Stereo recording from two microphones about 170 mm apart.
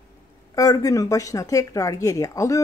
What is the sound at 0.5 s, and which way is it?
Speech, 20° left (ahead or behind).